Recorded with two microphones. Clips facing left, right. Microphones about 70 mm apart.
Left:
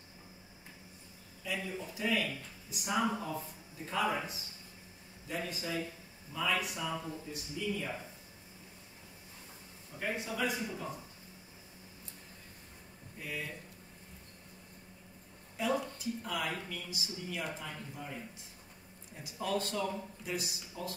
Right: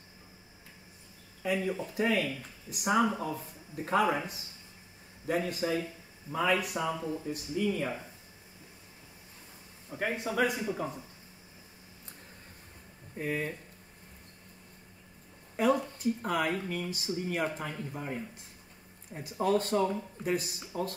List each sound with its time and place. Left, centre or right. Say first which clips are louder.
1.4 s speech: right 8 dB; right
5.5 s speech: right 6 dB; right
9.9 s speech: right 6 dB; right
10.5 s speech: right 5 dB; right
13.2 s speech: right 8 dB; right
15.5 s speech: right 6 dB; right